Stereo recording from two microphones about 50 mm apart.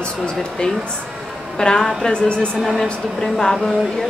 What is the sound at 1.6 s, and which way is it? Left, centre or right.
Speech, centre.